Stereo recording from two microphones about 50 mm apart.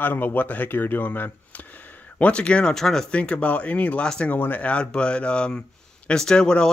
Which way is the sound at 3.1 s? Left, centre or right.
Left.